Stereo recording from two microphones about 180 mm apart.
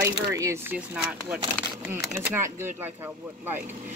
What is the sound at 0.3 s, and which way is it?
Speech, 15° right (ahead or behind).